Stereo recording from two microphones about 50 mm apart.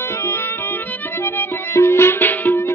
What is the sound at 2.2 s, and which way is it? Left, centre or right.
Music, left.